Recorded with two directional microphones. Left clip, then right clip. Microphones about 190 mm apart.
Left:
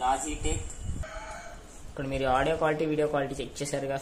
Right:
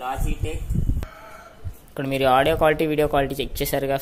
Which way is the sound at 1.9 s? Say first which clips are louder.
Right 8 dB; 40° right (ahead or behind).